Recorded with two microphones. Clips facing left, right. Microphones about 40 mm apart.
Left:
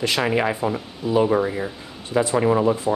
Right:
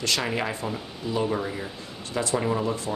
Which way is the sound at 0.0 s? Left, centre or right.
Centre.